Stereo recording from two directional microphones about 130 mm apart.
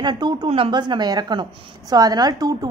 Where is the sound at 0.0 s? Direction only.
35° right (ahead or behind).